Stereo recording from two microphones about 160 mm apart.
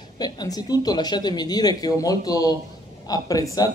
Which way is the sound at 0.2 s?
25° left (ahead or behind).